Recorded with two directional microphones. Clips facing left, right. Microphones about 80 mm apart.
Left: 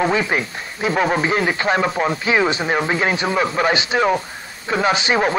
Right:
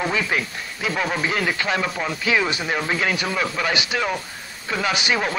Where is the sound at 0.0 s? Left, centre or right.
Left.